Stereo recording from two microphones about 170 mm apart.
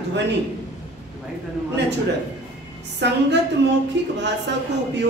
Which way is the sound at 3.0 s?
90° right.